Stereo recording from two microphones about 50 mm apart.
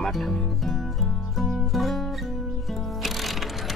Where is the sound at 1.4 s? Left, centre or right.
Centre.